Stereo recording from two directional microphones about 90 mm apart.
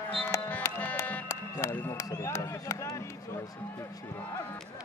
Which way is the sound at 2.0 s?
45° left (ahead or behind).